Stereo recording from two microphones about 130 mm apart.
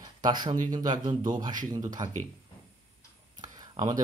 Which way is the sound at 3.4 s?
30° right (ahead or behind).